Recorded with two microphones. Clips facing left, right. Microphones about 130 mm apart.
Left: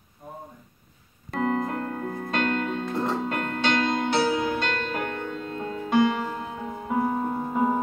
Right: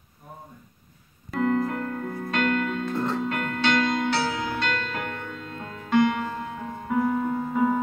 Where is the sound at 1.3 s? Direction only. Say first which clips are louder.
Right 2 dB; 25° left (ahead or behind).